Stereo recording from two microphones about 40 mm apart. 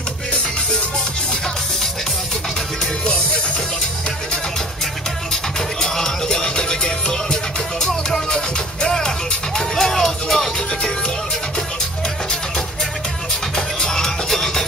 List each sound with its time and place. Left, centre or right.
5.8 s music: centre
9.6 s music: centre
13.6 s music: centre